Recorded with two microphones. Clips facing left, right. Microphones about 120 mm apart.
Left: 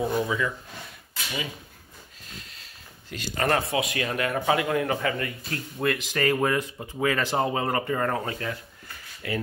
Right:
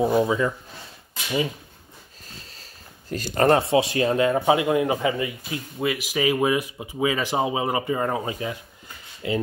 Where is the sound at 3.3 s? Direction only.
25° right (ahead or behind).